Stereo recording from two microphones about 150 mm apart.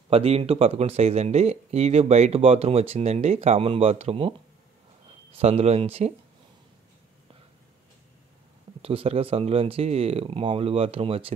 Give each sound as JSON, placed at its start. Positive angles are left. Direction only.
{"t": 0.1, "sound": "speech", "side_deg": -40}
{"t": 5.3, "sound": "speech", "side_deg": -45}
{"t": 8.8, "sound": "speech", "side_deg": -40}